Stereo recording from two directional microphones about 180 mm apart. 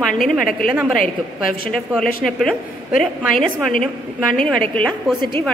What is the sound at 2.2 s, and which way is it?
A woman's voice, 5° left (ahead or behind).